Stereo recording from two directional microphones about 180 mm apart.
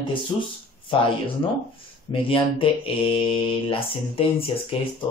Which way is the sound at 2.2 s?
30° left (ahead or behind).